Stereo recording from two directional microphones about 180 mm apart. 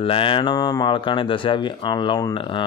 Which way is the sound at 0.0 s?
30° left (ahead or behind).